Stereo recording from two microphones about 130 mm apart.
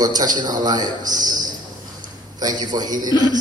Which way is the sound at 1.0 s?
80° right.